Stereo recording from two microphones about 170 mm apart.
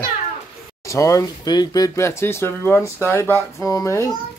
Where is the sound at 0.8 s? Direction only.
20° left (ahead or behind).